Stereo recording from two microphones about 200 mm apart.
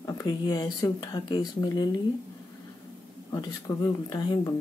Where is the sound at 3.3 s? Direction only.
20° left (ahead or behind).